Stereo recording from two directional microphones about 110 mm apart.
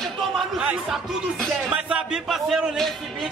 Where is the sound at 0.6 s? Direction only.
10° right (ahead or behind).